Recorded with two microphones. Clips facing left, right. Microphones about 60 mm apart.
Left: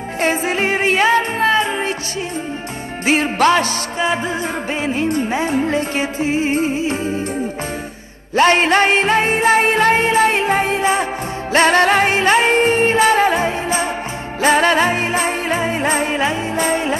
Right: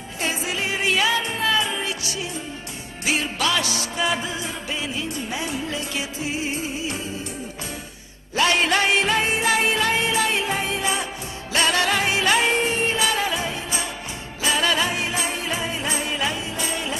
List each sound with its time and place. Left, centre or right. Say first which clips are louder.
0.2 s music: left 8 dB; left
3.1 s music: left 9 dB; left
8.4 s music: left 7 dB; left